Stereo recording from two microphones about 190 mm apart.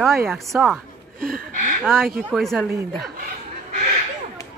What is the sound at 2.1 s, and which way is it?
Speech, centre (ahead or behind).